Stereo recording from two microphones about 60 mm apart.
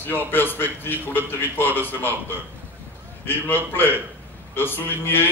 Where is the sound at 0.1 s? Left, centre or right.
Left.